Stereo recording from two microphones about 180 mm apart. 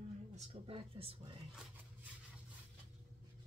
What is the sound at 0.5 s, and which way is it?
Speech, 30° right (ahead or behind).